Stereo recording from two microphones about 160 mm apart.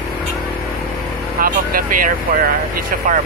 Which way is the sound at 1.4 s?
60° right (ahead or behind).